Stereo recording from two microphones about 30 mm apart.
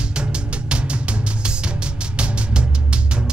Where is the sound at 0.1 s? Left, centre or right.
Right.